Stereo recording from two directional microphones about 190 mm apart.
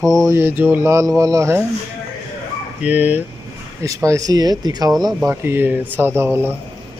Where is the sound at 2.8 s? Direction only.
10° right (ahead or behind).